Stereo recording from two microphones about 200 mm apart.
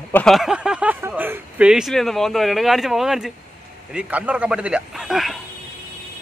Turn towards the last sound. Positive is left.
turn(degrees=0)  # may be behind; listen again after turning